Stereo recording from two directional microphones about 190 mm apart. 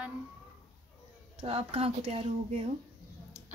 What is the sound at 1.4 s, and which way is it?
Speech, 30° right (ahead or behind).